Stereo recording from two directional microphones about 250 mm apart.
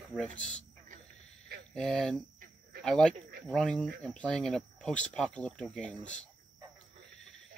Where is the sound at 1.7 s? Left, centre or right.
Centre.